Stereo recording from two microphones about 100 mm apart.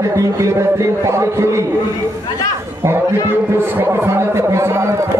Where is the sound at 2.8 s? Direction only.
25° right (ahead or behind).